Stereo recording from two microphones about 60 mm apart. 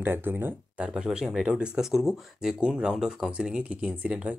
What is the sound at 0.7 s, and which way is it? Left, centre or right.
Speech, right.